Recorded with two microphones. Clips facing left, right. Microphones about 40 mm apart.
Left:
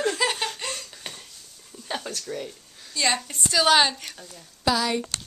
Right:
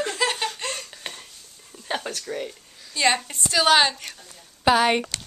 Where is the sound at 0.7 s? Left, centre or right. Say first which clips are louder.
Right 2 dB; centre.